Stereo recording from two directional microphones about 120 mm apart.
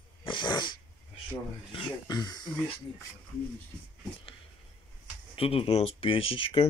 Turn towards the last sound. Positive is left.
turn(degrees=45)  # may be behind; listen again after turning